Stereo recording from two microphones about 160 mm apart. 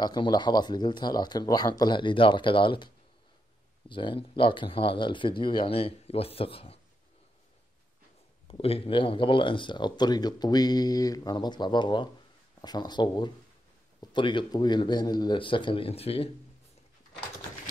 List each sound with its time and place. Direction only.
0.0 s speech: 25° left (ahead or behind)
3.9 s speech: 30° left (ahead or behind)
8.5 s speech: 35° left (ahead or behind)